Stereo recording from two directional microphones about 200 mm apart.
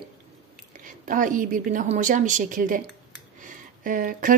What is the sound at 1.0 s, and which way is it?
Speech, 40° right (ahead or behind).